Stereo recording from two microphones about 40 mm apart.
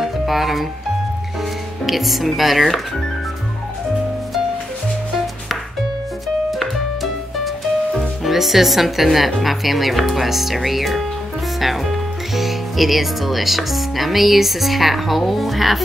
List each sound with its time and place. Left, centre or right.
0.0 s music: centre
1.9 s speech: centre
6.2 s music: centre
8.2 s speech: centre